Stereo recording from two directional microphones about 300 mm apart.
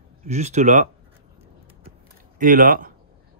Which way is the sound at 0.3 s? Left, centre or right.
Right.